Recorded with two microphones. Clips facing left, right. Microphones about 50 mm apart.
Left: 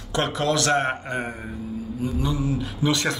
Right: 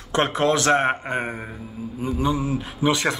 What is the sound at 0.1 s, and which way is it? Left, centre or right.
Speech, right.